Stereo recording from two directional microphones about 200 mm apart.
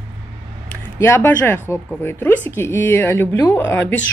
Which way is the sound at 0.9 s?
15° left (ahead or behind).